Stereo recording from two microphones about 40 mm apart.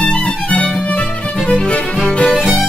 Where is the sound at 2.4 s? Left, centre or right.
Centre.